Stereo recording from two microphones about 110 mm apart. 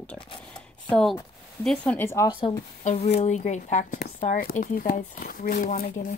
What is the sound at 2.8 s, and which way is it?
Speech, 80° left.